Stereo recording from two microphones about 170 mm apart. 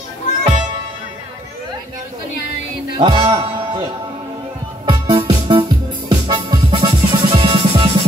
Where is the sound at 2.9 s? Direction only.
30° right (ahead or behind).